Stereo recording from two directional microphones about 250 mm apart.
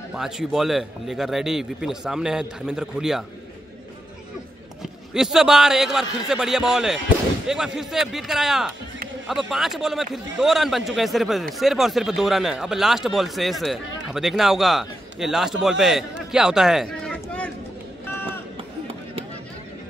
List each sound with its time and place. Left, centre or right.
0.1 s speech: centre
5.1 s speech: centre
18.0 s run: centre